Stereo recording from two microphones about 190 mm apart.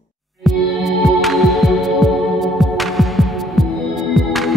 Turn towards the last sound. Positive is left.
turn(degrees=0)  # may be behind; listen again after turning